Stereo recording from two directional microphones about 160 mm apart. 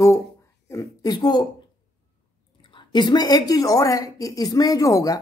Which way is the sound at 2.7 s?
25° left (ahead or behind).